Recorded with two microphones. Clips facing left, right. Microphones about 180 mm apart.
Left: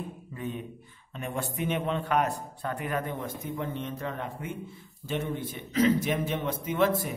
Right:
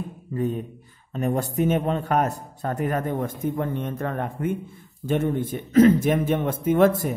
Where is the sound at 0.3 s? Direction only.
40° right (ahead or behind).